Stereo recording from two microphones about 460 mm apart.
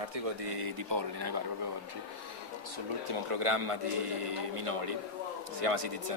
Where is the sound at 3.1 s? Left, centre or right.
Right.